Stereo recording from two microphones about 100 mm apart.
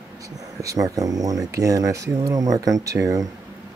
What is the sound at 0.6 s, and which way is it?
Speech, 35° right (ahead or behind).